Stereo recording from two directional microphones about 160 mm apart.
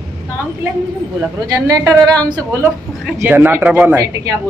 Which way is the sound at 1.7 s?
20° right (ahead or behind).